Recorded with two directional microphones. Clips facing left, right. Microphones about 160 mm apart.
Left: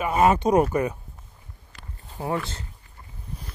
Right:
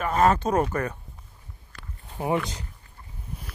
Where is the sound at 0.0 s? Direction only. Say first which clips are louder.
Left 2 dB; 10° left (ahead or behind).